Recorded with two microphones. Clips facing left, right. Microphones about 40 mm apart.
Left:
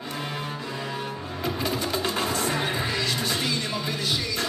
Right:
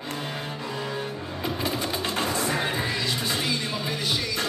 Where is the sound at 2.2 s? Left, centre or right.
Right.